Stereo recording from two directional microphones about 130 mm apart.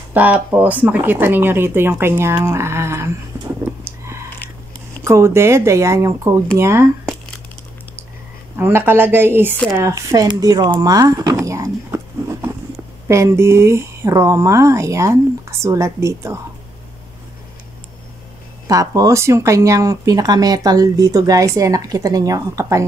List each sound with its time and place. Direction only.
0.1 s speech: 10° right (ahead or behind)
3.8 s a sound: 20° right (ahead or behind)
5.0 s speech: 20° right (ahead or behind)
8.5 s speech: 15° right (ahead or behind)
11.4 s a sound: 25° right (ahead or behind)
13.1 s speech: 20° right (ahead or behind)
18.7 s speech: 25° right (ahead or behind)